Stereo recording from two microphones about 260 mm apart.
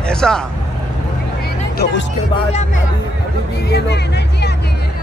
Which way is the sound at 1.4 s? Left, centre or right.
Left.